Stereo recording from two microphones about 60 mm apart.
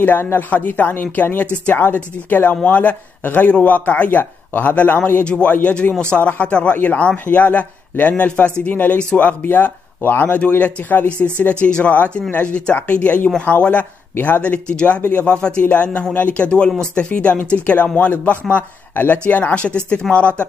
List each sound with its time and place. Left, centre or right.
0.2 s speech: left
0.5 s speech: left
14.4 s speech: centre